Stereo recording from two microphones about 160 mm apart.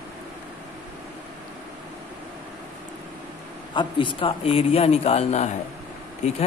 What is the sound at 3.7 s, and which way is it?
Speech, 30° left (ahead or behind).